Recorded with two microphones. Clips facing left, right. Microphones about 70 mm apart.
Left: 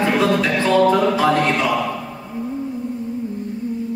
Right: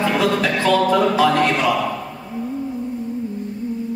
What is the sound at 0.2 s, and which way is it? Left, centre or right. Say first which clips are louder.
Music: left 1 dB; left.